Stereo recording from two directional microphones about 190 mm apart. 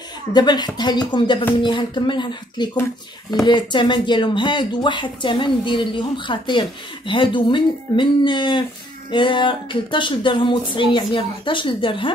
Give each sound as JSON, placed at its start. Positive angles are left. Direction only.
{"t": 0.3, "sound": "speech", "side_deg": 20}